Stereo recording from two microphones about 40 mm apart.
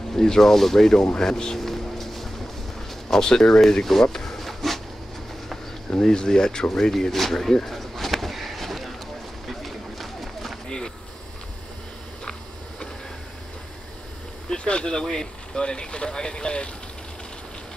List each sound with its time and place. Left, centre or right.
0.1 s speech: centre
1.6 s vehicle: centre
3.1 s speech: centre
3.8 s a sound: centre
5.9 s speech: centre
7.6 s a sound: centre
9.5 s run: centre
14.5 s speech: left